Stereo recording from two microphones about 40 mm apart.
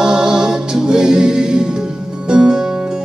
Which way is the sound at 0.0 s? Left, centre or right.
Centre.